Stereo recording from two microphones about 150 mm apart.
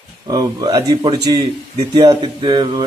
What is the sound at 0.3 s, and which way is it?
Speech, 25° right (ahead or behind).